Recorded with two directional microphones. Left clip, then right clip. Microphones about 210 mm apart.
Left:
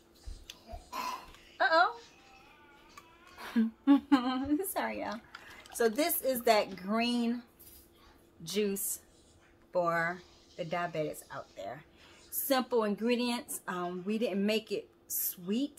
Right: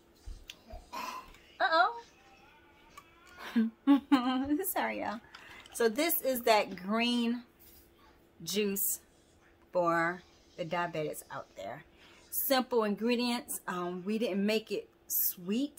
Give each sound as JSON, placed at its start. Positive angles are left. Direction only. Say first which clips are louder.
{"t": 0.5, "sound": "a sound", "louder": "left 1 dB", "side_deg": -10}
{"t": 3.4, "sound": "a woman's voice", "louder": "even", "side_deg": -10}
{"t": 8.5, "sound": "a woman's voice", "louder": "even", "side_deg": -20}